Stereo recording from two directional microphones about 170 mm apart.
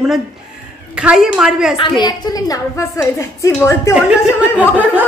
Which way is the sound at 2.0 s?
20° left (ahead or behind).